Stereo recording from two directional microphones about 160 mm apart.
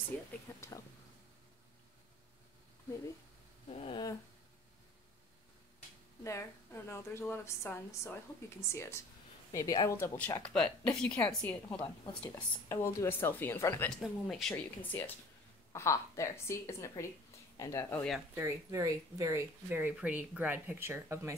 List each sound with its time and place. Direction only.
0.1 s a woman's voice: 10° left (ahead or behind)
0.6 s a sound: 20° left (ahead or behind)
3.7 s a sound: 40° left (ahead or behind)
6.2 s a woman's voice: 15° left (ahead or behind)
11.7 s a woman's voice: 25° left (ahead or behind)
12.6 s a woman's voice: 15° left (ahead or behind)
13.8 s a woman's voice: 5° left (ahead or behind)
18.3 s speech: 20° right (ahead or behind)